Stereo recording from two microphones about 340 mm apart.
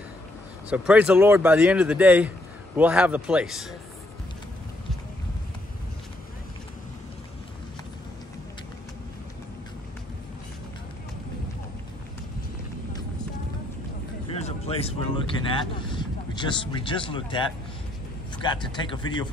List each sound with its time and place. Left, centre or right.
0.7 s speech: centre
14.4 s speech: centre